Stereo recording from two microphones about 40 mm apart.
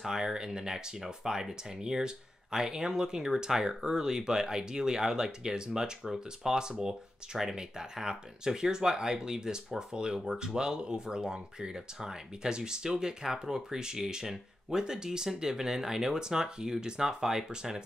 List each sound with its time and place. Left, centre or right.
0.0 s speech: centre